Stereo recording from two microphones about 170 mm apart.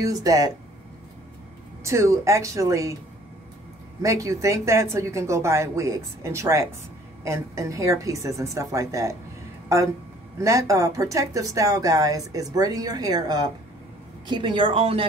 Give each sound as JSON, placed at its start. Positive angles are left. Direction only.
{"t": 0.0, "sound": "speech", "side_deg": -20}
{"t": 1.8, "sound": "speech", "side_deg": -15}
{"t": 4.0, "sound": "speech", "side_deg": -20}
{"t": 10.4, "sound": "speech", "side_deg": -20}